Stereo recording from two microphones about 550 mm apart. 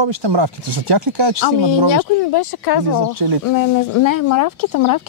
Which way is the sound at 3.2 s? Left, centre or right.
Right.